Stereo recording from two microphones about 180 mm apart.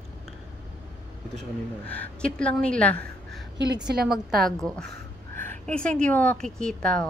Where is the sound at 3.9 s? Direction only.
65° right (ahead or behind).